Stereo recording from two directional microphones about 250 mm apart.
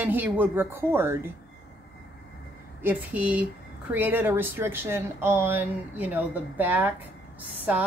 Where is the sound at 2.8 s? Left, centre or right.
Centre.